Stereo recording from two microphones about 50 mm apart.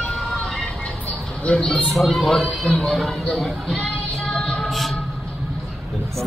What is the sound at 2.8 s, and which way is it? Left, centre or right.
Speech, centre.